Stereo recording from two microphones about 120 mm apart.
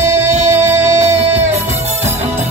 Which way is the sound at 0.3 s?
70° right (ahead or behind).